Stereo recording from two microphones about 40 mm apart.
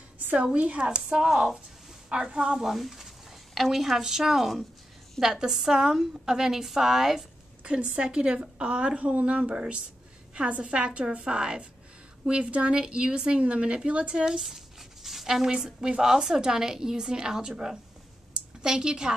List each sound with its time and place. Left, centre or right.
0.4 s a woman's voice: right
2.6 s speech: centre
7.6 s a woman's voice: right
14.4 s a woman's voice: centre